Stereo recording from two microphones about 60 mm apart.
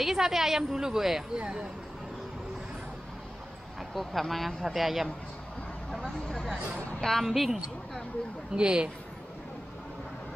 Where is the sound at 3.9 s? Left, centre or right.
Centre.